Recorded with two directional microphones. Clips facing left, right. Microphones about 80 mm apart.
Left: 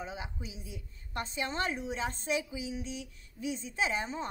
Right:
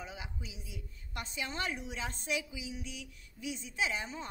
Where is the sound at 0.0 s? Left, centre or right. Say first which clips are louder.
Left 5 dB; left.